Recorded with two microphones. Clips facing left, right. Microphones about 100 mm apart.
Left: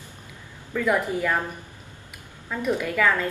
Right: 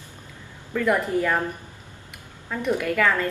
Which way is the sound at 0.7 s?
Centre (ahead or behind).